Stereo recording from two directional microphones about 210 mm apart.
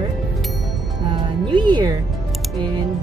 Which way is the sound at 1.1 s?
25° right (ahead or behind).